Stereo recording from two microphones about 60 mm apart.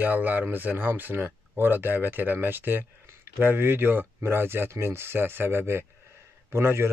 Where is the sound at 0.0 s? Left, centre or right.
Right.